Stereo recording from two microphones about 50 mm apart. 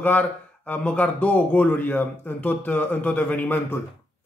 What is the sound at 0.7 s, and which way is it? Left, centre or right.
A man's voice, left.